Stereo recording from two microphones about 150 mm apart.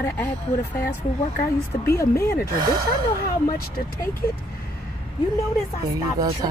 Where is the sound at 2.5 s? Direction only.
30° right (ahead or behind).